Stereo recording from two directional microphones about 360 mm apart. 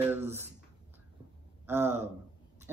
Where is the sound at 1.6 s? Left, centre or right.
Centre.